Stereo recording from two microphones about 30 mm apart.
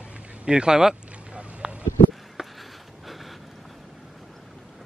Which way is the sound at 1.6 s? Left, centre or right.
Centre.